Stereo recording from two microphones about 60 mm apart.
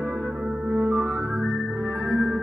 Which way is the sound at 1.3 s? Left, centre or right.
Centre.